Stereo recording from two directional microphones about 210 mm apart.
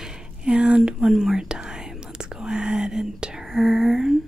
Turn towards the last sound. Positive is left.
turn(degrees=0)  # may be behind; listen again after turning